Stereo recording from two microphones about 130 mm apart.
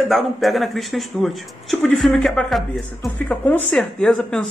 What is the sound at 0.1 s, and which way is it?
A man's voice, centre (ahead or behind).